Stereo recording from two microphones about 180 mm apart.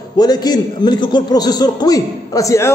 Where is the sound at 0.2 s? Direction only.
20° left (ahead or behind).